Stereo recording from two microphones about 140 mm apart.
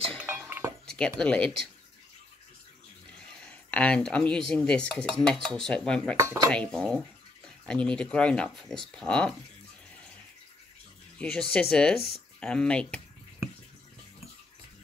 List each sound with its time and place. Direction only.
0.3 s chink: 15° right (ahead or behind)
0.8 s speech: 5° left (ahead or behind)
3.2 s a sound: 10° left (ahead or behind)
4.5 s speech: 10° left (ahead or behind)
6.1 s speech: 25° right (ahead or behind)
6.5 s speech: 5° left (ahead or behind)
11.1 s speech: 5° left (ahead or behind)